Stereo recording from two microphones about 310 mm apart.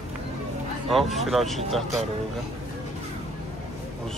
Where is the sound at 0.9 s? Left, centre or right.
Centre.